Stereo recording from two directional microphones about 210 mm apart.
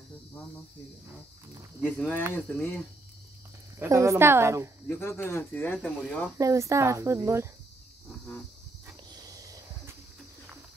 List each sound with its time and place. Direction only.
1.9 s speech: 5° left (ahead or behind)
3.8 s speech: 15° right (ahead or behind)
4.8 s speech: 10° left (ahead or behind)
6.3 s speech: 15° right (ahead or behind)
9.1 s a sound: 15° right (ahead or behind)